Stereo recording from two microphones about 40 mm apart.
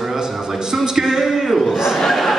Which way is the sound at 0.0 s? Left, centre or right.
Centre.